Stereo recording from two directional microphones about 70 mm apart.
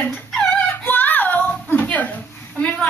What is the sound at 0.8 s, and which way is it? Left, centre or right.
Child singing, left.